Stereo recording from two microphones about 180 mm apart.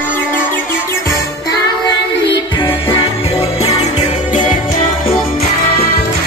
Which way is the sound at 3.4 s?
35° left (ahead or behind).